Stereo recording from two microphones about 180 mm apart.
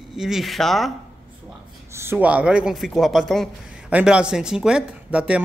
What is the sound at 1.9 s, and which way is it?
A man's voice, 15° right (ahead or behind).